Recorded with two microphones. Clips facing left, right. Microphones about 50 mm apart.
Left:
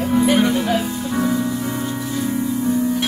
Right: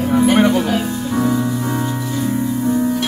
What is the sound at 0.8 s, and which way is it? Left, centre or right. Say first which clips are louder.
Music: right 2 dB; centre.